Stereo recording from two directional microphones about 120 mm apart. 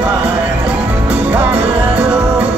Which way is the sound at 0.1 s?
10° right (ahead or behind).